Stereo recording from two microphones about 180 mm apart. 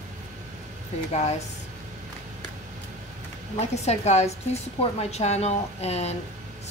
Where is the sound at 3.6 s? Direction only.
35° left (ahead or behind).